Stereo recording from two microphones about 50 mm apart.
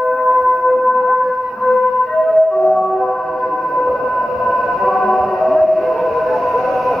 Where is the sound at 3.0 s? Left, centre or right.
Centre.